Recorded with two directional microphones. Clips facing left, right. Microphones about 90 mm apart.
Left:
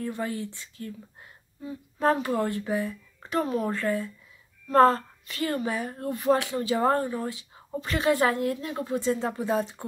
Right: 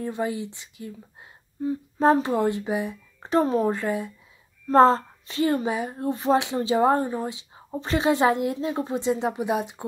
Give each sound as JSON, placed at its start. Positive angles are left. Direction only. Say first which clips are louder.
{"t": 0.0, "sound": "a woman's voice", "louder": "right 3 dB", "side_deg": -20}
{"t": 1.6, "sound": "a sound", "louder": "right 8 dB", "side_deg": -35}
{"t": 2.1, "sound": "a woman's voice", "louder": "right 4 dB", "side_deg": -25}
{"t": 3.2, "sound": "speech", "louder": "right 6 dB", "side_deg": -30}
{"t": 3.7, "sound": "a woman's voice", "louder": "right 1 dB", "side_deg": -20}